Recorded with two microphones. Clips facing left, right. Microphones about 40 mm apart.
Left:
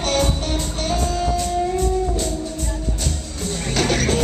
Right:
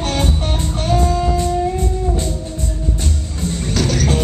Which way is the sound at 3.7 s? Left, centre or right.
Left.